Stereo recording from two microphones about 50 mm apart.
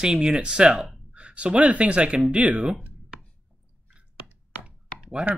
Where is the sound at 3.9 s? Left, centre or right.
Right.